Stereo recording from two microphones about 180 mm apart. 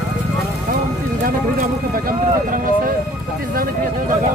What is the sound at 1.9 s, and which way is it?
Vehicle, 50° right (ahead or behind).